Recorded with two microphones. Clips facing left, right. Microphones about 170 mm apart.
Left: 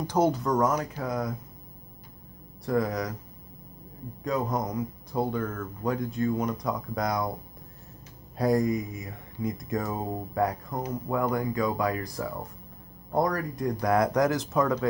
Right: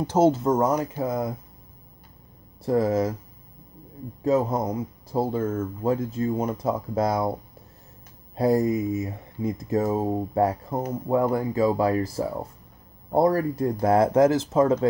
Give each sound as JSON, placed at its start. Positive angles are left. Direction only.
{"t": 0.0, "sound": "speech", "side_deg": -25}
{"t": 2.6, "sound": "speech", "side_deg": -25}
{"t": 4.5, "sound": "speech", "side_deg": -25}
{"t": 8.5, "sound": "speech", "side_deg": -25}